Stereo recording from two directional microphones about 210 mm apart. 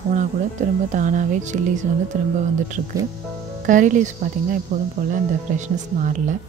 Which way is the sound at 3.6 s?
35° right (ahead or behind).